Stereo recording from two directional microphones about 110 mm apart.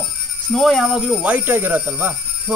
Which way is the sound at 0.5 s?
Centre (ahead or behind).